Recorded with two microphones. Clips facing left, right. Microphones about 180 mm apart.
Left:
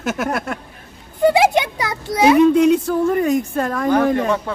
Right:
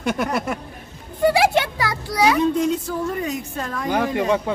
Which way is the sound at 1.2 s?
20° left (ahead or behind).